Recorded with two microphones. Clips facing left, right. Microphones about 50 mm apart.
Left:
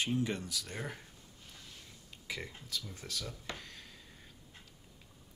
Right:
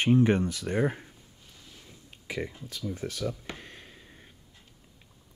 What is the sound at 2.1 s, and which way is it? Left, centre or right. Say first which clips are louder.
Speech: right 8 dB; right.